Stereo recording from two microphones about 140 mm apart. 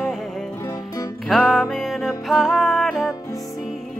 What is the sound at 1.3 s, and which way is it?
Music, centre (ahead or behind).